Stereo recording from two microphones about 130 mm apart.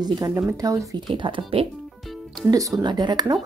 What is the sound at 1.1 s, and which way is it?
Speech, 40° right (ahead or behind).